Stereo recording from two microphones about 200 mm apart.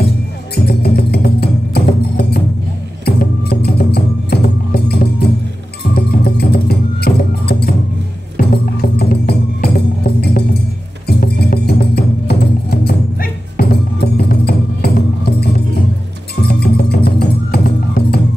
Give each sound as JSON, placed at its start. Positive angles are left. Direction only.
{"t": 0.7, "sound": "music", "side_deg": 50}